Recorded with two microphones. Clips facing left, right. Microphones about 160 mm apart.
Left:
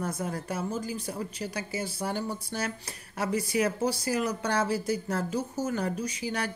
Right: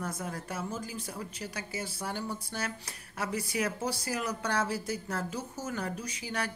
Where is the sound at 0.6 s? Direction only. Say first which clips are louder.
Left 4 dB; 35° left (ahead or behind).